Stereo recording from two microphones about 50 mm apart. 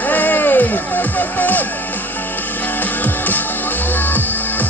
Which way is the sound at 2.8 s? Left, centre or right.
Left.